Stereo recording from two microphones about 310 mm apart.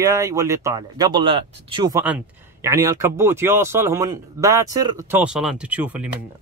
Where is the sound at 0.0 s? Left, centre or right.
Centre.